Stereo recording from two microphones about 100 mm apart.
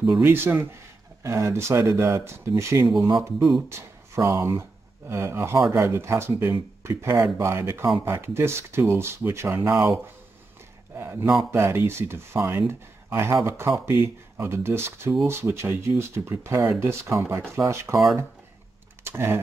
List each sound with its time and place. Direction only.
0.2 s speech: 20° right (ahead or behind)
11.5 s speech: 25° right (ahead or behind)
19.0 s speech: 25° right (ahead or behind)